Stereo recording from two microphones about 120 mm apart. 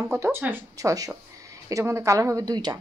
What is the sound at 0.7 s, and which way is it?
Speech, 30° right (ahead or behind).